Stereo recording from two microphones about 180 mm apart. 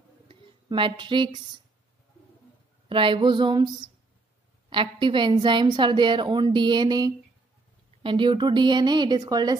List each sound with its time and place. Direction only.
0.7 s a woman's voice: 25° right (ahead or behind)
2.9 s a woman's voice: 30° right (ahead or behind)